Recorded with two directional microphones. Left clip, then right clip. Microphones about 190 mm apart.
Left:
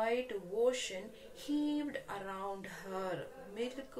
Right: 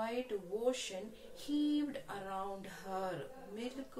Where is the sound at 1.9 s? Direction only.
15° left (ahead or behind).